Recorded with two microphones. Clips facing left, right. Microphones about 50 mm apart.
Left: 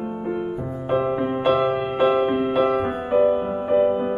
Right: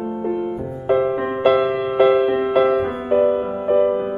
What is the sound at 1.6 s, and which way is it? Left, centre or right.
Music, centre.